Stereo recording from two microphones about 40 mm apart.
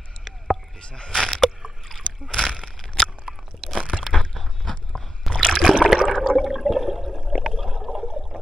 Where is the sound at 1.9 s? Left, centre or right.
Centre.